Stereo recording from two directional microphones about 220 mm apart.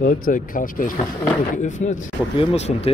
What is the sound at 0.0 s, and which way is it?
Speech, 35° left (ahead or behind).